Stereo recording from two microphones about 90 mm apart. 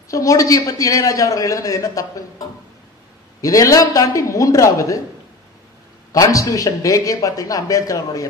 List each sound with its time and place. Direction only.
0.1 s a man's voice: 35° left (ahead or behind)
6.1 s a man's voice: 35° left (ahead or behind)